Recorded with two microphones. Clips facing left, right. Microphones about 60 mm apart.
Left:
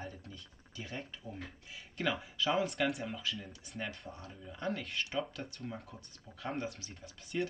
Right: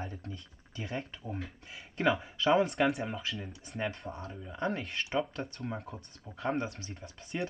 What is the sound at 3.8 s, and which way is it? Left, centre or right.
Speech, right.